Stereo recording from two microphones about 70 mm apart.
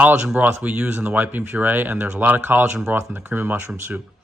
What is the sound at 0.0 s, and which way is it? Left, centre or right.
Speech, centre.